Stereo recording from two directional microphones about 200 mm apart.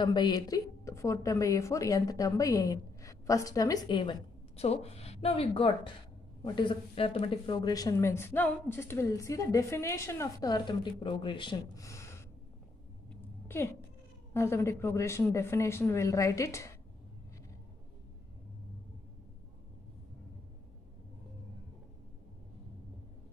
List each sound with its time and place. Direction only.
0.0 s a woman's voice: 20° left (ahead or behind)
13.1 s a sound: 10° left (ahead or behind)
14.3 s speech: 15° left (ahead or behind)